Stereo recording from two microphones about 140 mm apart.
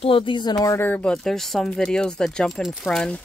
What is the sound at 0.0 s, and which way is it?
Speech, 40° left (ahead or behind).